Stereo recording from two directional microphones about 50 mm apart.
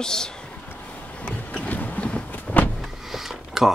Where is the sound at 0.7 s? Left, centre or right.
Left.